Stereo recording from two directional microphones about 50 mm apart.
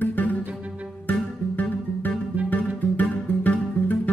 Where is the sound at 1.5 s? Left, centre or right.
Left.